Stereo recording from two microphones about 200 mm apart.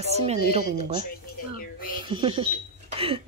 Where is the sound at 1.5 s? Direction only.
45° left (ahead or behind).